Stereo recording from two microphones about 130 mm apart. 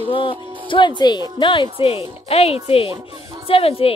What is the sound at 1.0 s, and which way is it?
A woman's voice, 35° left (ahead or behind).